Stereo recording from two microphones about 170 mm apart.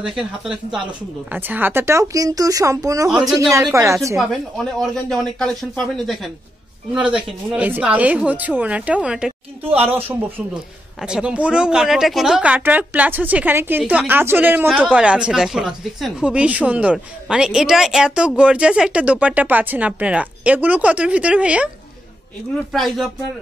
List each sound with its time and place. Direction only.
0.1 s speech: 5° right (ahead or behind); by 3.1 s 20° right (ahead or behind)
3.1 s speech: 5° right (ahead or behind)
3.3 s speech: 20° right (ahead or behind)
4.2 s speech: centre (ahead or behind)
22.7 s speech: centre (ahead or behind)